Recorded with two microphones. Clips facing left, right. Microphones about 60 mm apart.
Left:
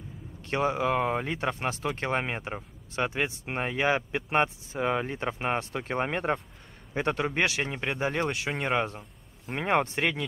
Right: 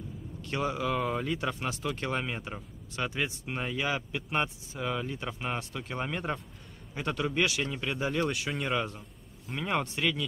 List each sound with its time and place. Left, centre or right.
0.4 s speech: left